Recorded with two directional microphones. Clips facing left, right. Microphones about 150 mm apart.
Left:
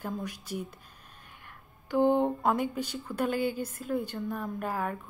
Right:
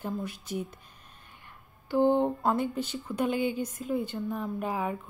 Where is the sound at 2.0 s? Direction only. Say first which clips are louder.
Right 1 dB; 15° left (ahead or behind).